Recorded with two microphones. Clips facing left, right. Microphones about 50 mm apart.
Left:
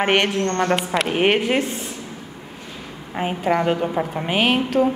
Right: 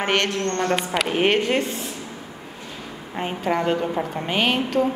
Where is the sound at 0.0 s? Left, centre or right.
Centre.